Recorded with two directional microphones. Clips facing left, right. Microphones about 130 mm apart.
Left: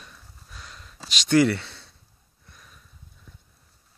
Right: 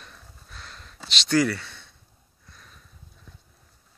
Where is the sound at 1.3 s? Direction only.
25° left (ahead or behind).